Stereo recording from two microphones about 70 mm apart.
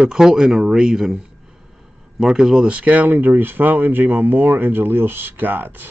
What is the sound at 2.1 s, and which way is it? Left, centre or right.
Speech, centre.